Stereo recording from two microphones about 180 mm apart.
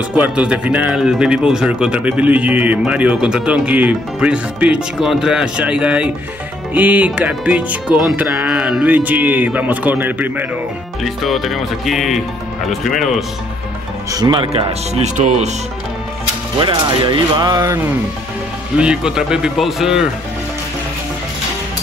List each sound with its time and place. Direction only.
0.1 s speech: 5° right (ahead or behind)
14.1 s speech: 25° right (ahead or behind); by 15.5 s 40° right (ahead or behind)
16.5 s speech: 25° right (ahead or behind)
18.8 s speech: 5° right (ahead or behind)